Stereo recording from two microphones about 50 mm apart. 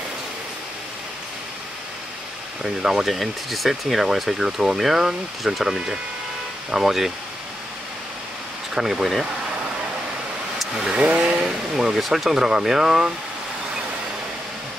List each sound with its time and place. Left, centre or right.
2.6 s speech: centre
3.1 s speech: centre
8.7 s speech: centre
10.7 s vehicle: centre
11.0 s vehicle: right
11.3 s speech: centre